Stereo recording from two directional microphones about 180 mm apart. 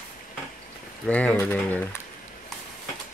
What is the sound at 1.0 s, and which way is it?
Speech, 10° left (ahead or behind).